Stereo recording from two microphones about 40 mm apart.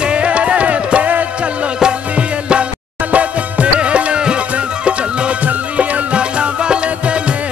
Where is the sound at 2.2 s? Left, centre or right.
Right.